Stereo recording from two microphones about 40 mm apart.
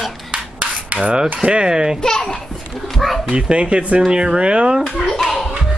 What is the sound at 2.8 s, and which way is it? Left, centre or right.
Speech, centre.